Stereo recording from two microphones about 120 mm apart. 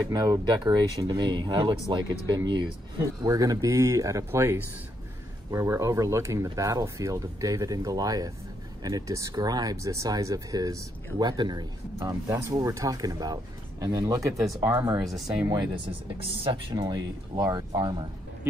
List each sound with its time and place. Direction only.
0.1 s speech: 30° right (ahead or behind)
12.3 s speech: 25° right (ahead or behind)
14.6 s speech: 20° right (ahead or behind)
15.0 s speech: 5° right (ahead or behind)
16.7 s speech: 35° right (ahead or behind)